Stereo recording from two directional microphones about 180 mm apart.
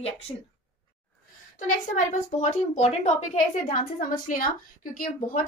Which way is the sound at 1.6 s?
45° left (ahead or behind).